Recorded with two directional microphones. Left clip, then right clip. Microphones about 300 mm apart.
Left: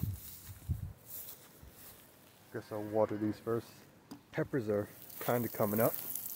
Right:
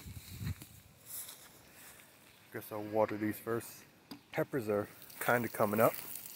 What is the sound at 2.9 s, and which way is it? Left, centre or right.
Speech, right.